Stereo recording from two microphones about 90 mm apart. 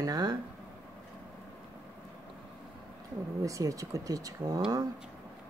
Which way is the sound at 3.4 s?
40° right (ahead or behind).